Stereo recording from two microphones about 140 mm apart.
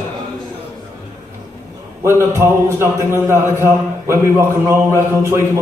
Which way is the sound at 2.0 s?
20° right (ahead or behind).